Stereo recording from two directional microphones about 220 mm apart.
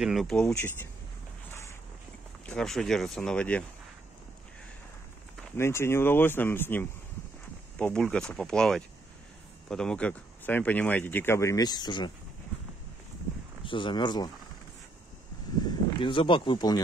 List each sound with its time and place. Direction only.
0.0 s speech: centre (ahead or behind)
2.4 s speech: 5° left (ahead or behind)
5.6 s speech: 10° left (ahead or behind)
13.7 s speech: 20° left (ahead or behind)
16.0 s speech: 20° left (ahead or behind)